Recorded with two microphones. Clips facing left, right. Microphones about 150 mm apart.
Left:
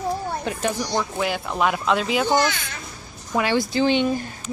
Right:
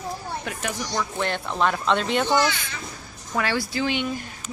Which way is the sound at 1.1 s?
5° left (ahead or behind).